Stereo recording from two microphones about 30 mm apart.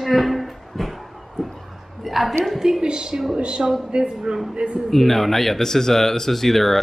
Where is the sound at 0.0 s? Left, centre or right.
Centre.